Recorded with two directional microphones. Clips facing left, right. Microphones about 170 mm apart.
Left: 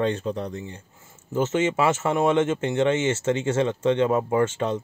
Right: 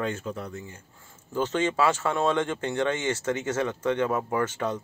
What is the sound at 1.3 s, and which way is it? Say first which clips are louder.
Speech: left 3 dB; 20° left (ahead or behind).